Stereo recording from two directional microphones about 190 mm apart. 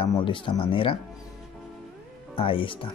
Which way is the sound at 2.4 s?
25° left (ahead or behind).